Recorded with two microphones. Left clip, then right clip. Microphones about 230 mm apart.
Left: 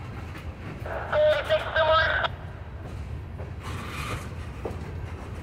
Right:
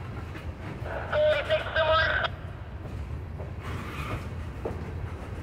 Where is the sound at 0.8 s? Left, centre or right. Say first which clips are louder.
Left 2 dB; left.